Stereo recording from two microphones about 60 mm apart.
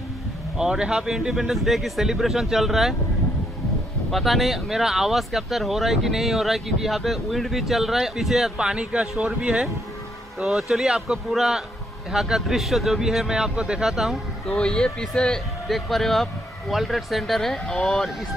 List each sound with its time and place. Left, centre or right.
0.6 s speech: centre
4.1 s speech: centre
8.5 s speech: centre
14.5 s speech: centre
15.7 s speech: centre